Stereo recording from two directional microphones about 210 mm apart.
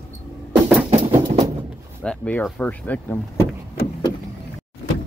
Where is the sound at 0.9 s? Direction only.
30° right (ahead or behind).